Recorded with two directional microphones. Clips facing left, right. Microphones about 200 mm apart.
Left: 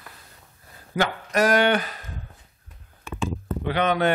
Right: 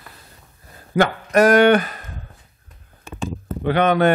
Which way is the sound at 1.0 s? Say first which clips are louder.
Right 7 dB; 55° right (ahead or behind).